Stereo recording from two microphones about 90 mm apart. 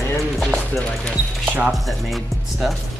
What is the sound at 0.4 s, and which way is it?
Music, 5° left (ahead or behind).